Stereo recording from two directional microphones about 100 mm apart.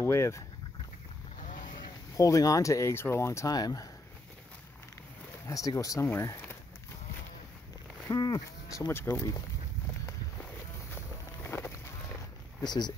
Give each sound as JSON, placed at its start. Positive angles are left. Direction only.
{"t": 0.0, "sound": "speech", "side_deg": 30}
{"t": 1.8, "sound": "speech", "side_deg": 35}
{"t": 5.5, "sound": "speech", "side_deg": 35}
{"t": 6.0, "sound": "speech", "side_deg": 25}
{"t": 8.1, "sound": "speech", "side_deg": 35}
{"t": 10.9, "sound": "a sound", "side_deg": 20}
{"t": 12.6, "sound": "speech", "side_deg": 45}